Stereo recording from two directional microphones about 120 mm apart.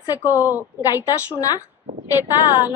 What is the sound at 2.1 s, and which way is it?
Speech, 15° right (ahead or behind).